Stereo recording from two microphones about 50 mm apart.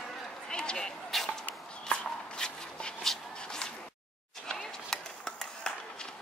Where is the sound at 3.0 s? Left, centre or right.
Centre.